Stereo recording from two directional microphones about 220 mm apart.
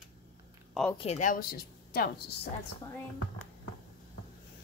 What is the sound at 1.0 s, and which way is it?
A woman's voice, 30° left (ahead or behind).